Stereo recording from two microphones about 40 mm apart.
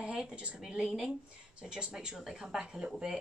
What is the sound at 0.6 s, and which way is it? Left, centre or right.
Speech, centre.